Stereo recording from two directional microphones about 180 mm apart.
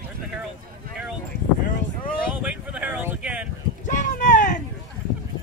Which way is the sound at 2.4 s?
10° right (ahead or behind).